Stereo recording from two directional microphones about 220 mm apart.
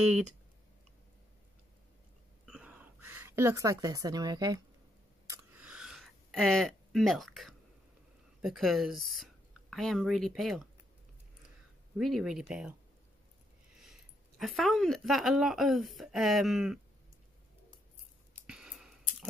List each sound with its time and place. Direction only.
0.0 s a woman's voice: 5° right (ahead or behind)
2.4 s a sound: 5° right (ahead or behind)
8.4 s a woman's voice: centre (ahead or behind)
12.0 s a woman's voice: centre (ahead or behind)
14.4 s a woman's voice: centre (ahead or behind)
18.5 s a sound: 5° right (ahead or behind)